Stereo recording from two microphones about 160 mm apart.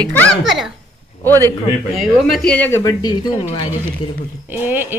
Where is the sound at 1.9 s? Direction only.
Centre (ahead or behind).